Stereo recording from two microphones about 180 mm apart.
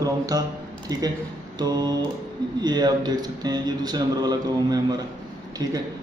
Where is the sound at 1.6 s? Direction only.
20° right (ahead or behind).